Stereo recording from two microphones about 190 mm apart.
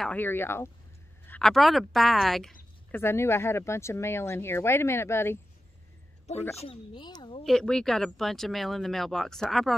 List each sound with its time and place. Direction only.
0.0 s a woman's voice: 10° left (ahead or behind)
3.0 s speech: 15° left (ahead or behind)
6.5 s speech: 30° left (ahead or behind)
7.4 s speech: 5° left (ahead or behind)